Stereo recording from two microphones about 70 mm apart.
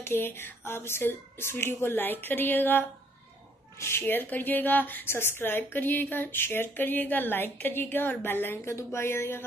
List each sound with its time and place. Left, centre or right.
0.0 s a woman's voice: left
3.8 s a woman's voice: left